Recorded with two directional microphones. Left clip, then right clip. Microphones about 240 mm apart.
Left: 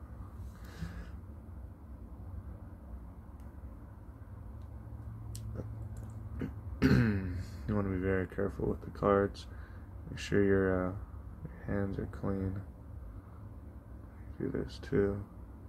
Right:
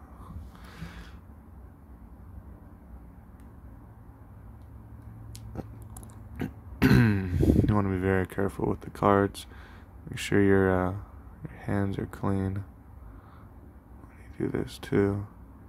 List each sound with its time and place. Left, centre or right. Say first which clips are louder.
6.3 s a sound: right 6 dB; right
10.1 s speech: right 6 dB; right
14.4 s speech: right 6 dB; right